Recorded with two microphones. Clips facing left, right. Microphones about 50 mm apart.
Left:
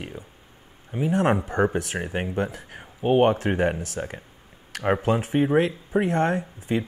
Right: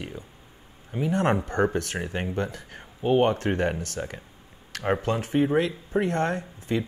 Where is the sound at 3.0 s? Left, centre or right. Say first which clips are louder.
Left 2 dB; left.